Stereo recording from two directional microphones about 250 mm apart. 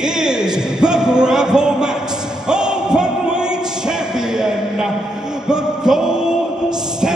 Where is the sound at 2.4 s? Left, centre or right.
Centre.